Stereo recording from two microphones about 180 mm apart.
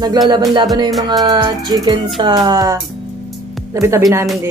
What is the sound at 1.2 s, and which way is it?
Music, 25° right (ahead or behind).